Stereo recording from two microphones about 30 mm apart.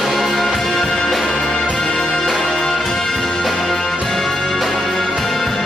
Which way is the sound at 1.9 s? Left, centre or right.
Left.